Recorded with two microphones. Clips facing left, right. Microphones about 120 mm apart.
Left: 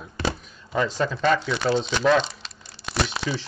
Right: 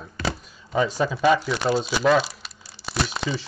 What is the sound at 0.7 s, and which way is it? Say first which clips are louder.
Speech: right 2 dB; 10° right (ahead or behind).